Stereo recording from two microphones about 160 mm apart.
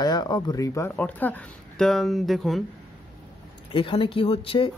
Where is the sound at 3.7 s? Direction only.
30° left (ahead or behind).